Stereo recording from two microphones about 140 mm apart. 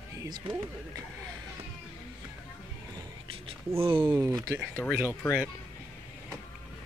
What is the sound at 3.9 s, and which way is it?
Speech, 15° right (ahead or behind).